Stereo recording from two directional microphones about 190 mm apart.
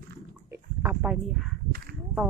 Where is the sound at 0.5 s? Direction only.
10° right (ahead or behind).